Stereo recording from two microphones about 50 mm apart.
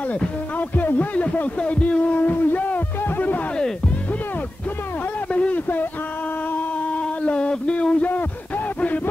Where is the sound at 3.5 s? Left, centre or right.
Centre.